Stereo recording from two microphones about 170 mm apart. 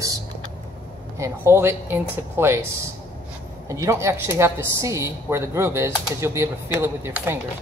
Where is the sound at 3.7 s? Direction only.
20° right (ahead or behind).